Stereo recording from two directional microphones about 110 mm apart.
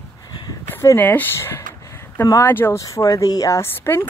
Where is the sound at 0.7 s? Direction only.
20° left (ahead or behind).